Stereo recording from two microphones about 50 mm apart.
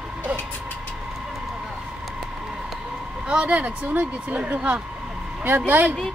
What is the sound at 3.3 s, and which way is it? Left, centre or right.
Speech, right.